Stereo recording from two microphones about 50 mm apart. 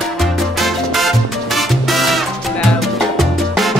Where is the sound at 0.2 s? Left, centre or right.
Centre.